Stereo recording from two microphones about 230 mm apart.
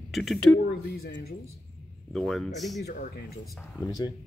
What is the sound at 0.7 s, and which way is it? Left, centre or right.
Speech, left.